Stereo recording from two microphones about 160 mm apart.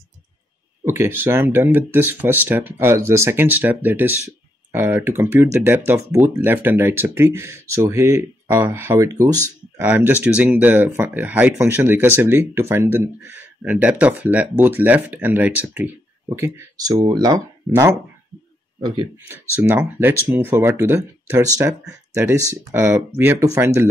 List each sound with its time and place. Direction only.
0.8 s speech: 15° right (ahead or behind)
18.8 s speech: 25° right (ahead or behind)
19.1 s speech: 15° right (ahead or behind)